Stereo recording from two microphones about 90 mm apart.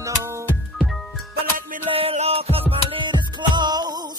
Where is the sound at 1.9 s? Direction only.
90° right.